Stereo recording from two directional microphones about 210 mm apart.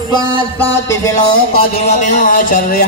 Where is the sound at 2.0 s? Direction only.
35° left (ahead or behind).